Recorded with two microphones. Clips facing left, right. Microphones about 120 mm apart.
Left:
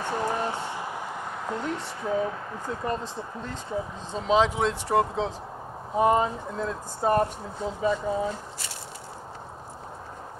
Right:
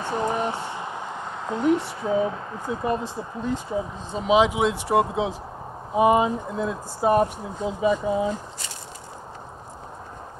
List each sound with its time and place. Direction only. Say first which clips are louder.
0.0 s a sound: right 3 dB; 20° right (ahead or behind)
2.7 s speech: right 5 dB; 10° right (ahead or behind)
4.1 s speech: right 3 dB; 10° right (ahead or behind)